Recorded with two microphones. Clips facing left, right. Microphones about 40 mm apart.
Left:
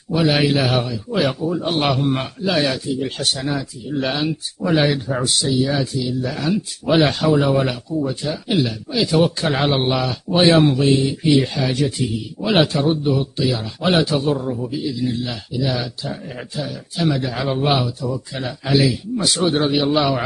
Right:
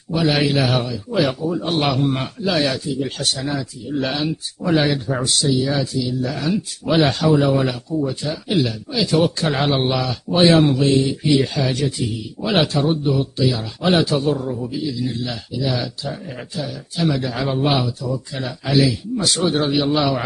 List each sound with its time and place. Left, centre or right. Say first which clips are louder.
0.1 s a man's voice: left 1 dB; centre
3.2 s speech: left 1 dB; centre
3.5 s a man's voice: even; centre